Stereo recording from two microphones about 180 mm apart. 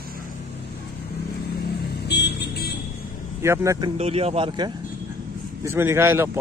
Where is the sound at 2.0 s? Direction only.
70° left (ahead or behind).